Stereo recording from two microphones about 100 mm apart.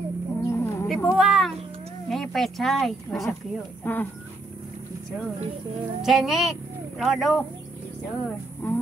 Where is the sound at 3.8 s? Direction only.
20° left (ahead or behind).